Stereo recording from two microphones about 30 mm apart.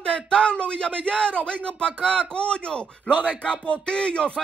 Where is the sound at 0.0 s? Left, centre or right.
Left.